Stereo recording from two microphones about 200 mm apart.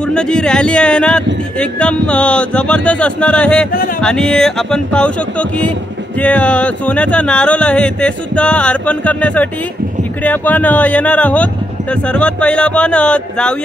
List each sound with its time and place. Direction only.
0.1 s speech: 5° left (ahead or behind)
6.1 s a sound: 5° left (ahead or behind)
11.9 s speech: 5° left (ahead or behind)